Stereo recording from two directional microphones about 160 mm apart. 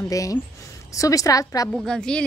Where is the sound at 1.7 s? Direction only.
5° left (ahead or behind).